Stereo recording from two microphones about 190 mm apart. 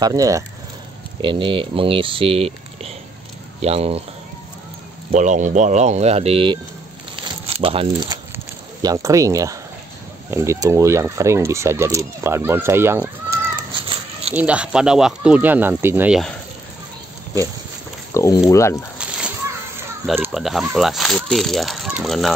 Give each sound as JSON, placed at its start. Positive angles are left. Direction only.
{"t": 0.0, "sound": "speech", "side_deg": -20}
{"t": 5.1, "sound": "speech", "side_deg": -40}
{"t": 7.2, "sound": "crumpling", "side_deg": -30}
{"t": 8.8, "sound": "speech", "side_deg": -15}
{"t": 18.1, "sound": "speech", "side_deg": 15}
{"t": 18.9, "sound": "a sound", "side_deg": -5}
{"t": 20.2, "sound": "speech", "side_deg": 0}